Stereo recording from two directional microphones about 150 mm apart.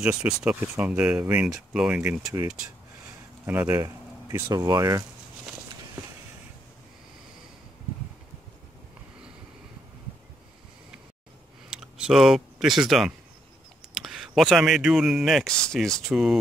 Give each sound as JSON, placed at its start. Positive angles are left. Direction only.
{"t": 0.0, "sound": "speech", "side_deg": -10}
{"t": 3.4, "sound": "speech", "side_deg": -15}
{"t": 11.7, "sound": "speech", "side_deg": -5}